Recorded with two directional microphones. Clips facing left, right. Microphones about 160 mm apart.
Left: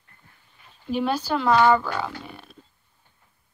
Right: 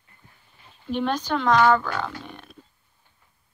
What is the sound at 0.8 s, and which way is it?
Speech, 5° left (ahead or behind).